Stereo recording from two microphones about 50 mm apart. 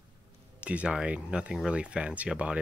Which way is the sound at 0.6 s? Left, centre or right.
Right.